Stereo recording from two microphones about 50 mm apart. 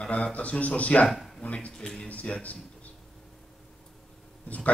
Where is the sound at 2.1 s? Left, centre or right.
Left.